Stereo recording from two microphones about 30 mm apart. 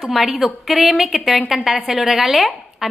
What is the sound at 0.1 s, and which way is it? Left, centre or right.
A woman's voice, centre.